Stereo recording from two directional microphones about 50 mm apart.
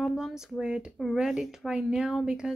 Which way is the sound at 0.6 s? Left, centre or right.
Centre.